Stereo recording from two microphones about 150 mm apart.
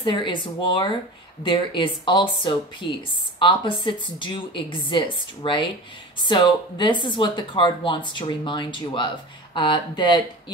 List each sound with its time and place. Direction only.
0.0 s speech: 35° left (ahead or behind)